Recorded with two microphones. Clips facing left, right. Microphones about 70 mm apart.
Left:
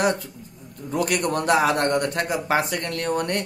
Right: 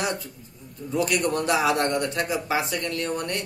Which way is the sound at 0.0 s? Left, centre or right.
Left.